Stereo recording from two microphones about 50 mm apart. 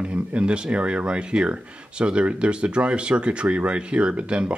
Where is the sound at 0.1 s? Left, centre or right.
Right.